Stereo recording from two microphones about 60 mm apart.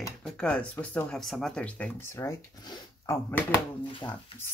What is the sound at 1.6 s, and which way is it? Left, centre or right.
Speech, centre.